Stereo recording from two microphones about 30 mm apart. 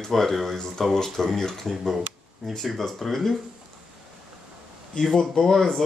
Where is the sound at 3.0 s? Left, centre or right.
Centre.